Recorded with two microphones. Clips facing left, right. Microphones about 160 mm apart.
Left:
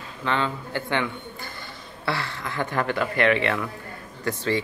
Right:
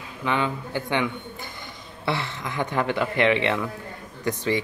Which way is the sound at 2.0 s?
20° right (ahead or behind).